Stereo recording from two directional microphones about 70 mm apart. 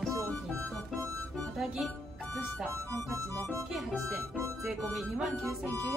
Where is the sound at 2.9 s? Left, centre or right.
Right.